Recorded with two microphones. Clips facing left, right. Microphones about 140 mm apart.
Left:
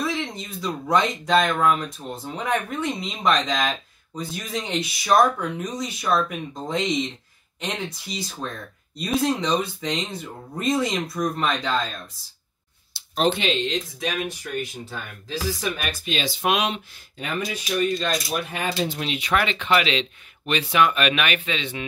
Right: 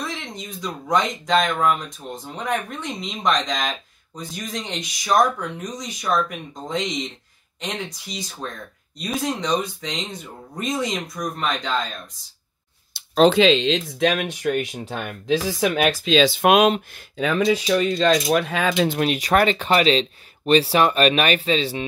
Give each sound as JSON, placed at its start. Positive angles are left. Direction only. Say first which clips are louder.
{"t": 0.0, "sound": "speech", "louder": "left 4 dB", "side_deg": 5}
{"t": 12.9, "sound": "a sound", "louder": "right 2 dB", "side_deg": -55}
{"t": 13.3, "sound": "speech", "louder": "right 7 dB", "side_deg": -90}
{"t": 16.4, "sound": "speech", "louder": "right 4 dB", "side_deg": -50}
{"t": 17.5, "sound": "speech", "louder": "right 1 dB", "side_deg": -90}
{"t": 18.9, "sound": "speech", "louder": "right 5 dB", "side_deg": -50}